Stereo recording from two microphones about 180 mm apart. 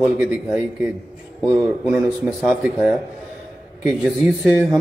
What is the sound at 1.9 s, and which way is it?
A man's voice, centre (ahead or behind).